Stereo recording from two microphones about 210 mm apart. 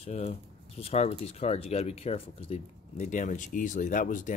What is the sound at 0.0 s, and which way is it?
Speech, 30° left (ahead or behind).